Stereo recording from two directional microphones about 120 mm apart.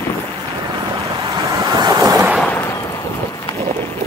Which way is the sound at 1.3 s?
30° right (ahead or behind).